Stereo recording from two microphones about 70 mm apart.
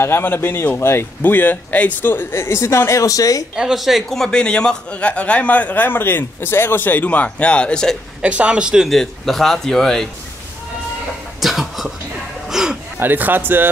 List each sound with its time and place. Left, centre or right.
0.0 s speech: left
3.5 s a man's voice: centre
8.2 s a man's voice: centre
8.8 s a man's voice: centre
11.4 s speech: centre
12.4 s a sound: centre
13.0 s speech: right